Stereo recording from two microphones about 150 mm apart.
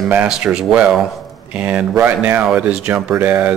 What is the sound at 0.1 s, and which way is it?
Speech, 10° right (ahead or behind).